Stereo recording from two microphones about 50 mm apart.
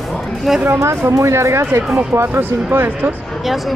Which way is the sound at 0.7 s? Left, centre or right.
Right.